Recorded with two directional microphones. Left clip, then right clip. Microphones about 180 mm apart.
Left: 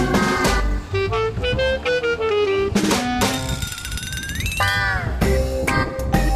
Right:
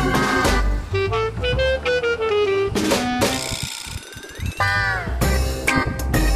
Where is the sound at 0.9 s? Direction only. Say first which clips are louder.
Even; centre (ahead or behind).